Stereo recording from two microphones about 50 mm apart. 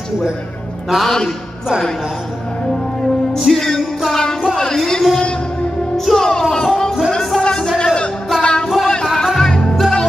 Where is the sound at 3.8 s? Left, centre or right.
Centre.